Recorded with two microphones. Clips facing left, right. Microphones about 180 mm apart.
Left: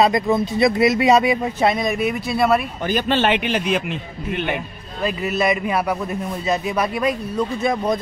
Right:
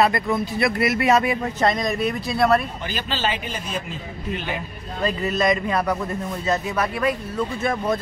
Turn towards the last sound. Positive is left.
turn(degrees=15)  # may be behind; listen again after turning